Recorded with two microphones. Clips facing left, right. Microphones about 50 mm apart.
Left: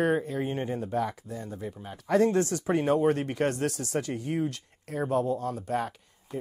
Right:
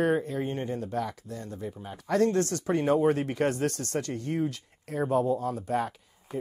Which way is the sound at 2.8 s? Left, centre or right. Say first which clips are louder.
Right 2 dB; centre.